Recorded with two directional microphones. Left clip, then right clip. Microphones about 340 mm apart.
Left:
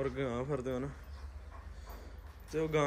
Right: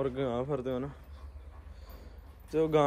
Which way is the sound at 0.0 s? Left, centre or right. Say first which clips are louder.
Right 4 dB; centre.